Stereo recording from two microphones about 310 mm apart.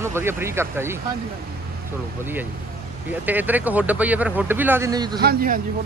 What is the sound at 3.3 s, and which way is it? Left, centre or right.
Speech, centre.